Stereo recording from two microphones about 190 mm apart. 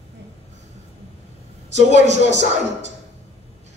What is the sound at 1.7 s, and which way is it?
Speech, 35° right (ahead or behind).